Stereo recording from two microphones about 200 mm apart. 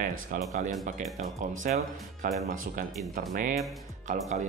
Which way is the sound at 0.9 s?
40° right (ahead or behind).